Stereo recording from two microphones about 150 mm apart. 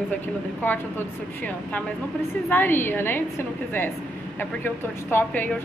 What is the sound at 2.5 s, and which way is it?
A woman's voice, 15° left (ahead or behind).